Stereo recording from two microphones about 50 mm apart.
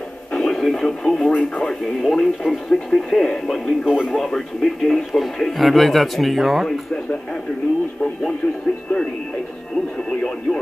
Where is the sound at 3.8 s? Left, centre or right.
Centre.